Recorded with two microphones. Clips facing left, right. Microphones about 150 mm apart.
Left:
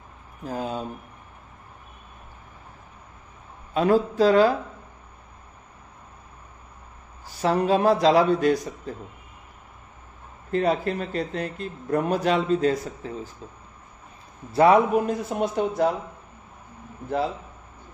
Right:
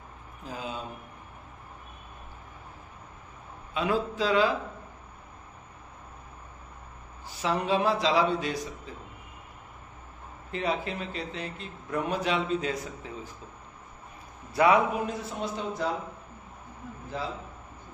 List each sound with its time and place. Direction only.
0.5 s speech: 45° left (ahead or behind)
3.7 s speech: 45° left (ahead or behind)
7.4 s speech: 45° left (ahead or behind)
10.5 s speech: 45° left (ahead or behind)
14.5 s a man's voice: 35° left (ahead or behind)
15.0 s a man's voice: 55° left (ahead or behind)